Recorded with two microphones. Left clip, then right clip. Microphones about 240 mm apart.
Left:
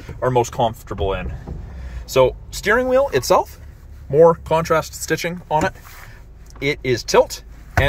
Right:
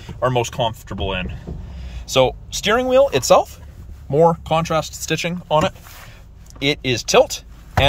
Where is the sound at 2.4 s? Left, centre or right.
Centre.